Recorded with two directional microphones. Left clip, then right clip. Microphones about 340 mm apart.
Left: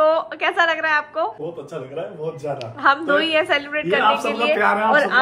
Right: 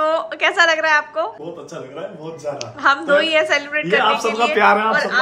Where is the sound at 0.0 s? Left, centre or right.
Centre.